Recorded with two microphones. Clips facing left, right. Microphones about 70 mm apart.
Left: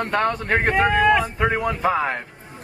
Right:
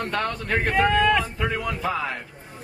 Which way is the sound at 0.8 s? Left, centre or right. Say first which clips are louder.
Left 2 dB; centre.